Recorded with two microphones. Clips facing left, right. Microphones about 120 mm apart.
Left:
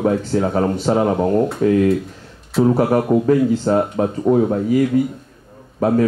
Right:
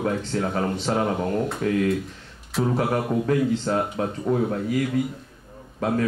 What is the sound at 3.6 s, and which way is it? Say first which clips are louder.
Speech: left 7 dB; 50° left (ahead or behind).